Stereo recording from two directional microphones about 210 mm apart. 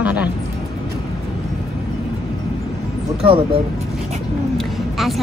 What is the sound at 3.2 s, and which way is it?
Speech, 25° right (ahead or behind).